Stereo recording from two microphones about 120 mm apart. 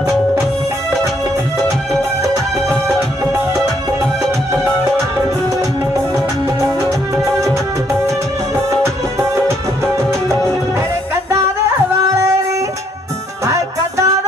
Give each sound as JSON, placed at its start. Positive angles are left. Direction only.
{"t": 13.5, "sound": "music", "side_deg": -25}